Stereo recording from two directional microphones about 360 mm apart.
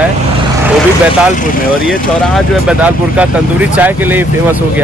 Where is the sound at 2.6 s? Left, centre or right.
Centre.